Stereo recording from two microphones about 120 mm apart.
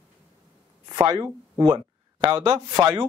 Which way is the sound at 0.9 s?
30° right (ahead or behind).